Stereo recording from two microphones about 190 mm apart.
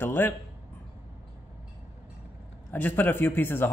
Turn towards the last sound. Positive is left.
turn(degrees=10)  # may be behind; listen again after turning